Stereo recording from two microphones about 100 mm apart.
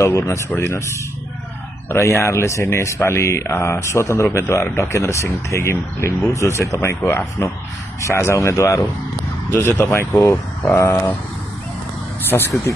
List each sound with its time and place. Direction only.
0.0 s speech: 30° left (ahead or behind)
12.3 s speech: 20° left (ahead or behind)